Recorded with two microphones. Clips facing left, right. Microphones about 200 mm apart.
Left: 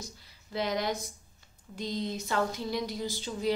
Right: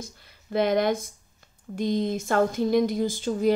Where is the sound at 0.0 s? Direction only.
55° right (ahead or behind).